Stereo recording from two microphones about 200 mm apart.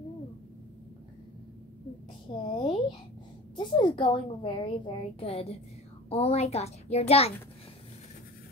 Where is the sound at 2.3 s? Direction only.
25° left (ahead or behind).